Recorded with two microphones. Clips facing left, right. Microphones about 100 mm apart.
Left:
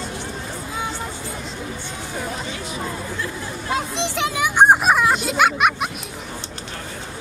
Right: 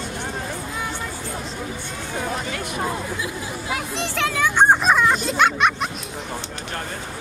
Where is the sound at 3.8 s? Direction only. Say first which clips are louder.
Left 2 dB; 20° left (ahead or behind).